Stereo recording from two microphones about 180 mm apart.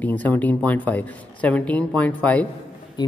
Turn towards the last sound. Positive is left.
turn(degrees=25)  # may be behind; listen again after turning